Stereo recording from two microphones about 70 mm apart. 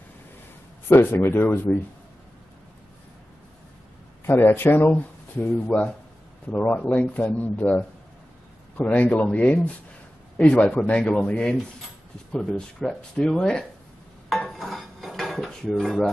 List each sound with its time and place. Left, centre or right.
0.8 s speech: left
4.3 s speech: left
6.5 s speech: left
14.6 s dishes: centre